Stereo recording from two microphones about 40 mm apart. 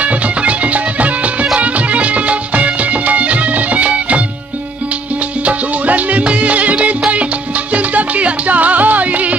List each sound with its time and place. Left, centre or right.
0.0 s music: right
5.4 s music: right